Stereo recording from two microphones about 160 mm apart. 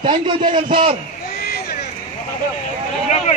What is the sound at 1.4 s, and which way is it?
Vehicle, 75° left (ahead or behind).